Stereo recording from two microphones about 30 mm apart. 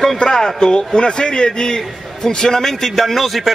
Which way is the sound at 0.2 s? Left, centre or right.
Centre.